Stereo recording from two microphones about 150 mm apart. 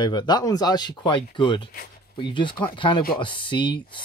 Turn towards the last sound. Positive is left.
turn(degrees=35)  # may be behind; listen again after turning